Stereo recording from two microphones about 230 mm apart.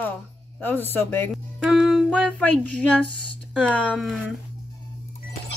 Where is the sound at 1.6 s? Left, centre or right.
Centre.